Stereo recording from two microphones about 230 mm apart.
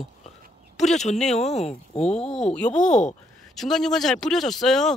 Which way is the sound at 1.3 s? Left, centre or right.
Left.